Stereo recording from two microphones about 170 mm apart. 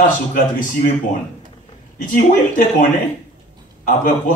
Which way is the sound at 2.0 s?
50° left (ahead or behind).